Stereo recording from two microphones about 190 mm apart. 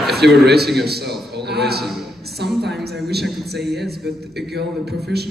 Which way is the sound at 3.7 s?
55° right (ahead or behind).